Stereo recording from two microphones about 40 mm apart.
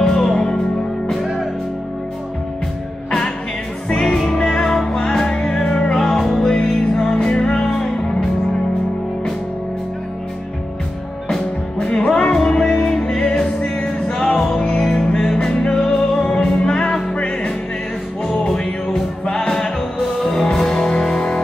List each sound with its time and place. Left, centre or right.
0.0 s music: centre
1.1 s music: centre
4.0 s music: centre
5.9 s music: centre
11.8 s music: left
18.5 s music: centre
20.0 s music: centre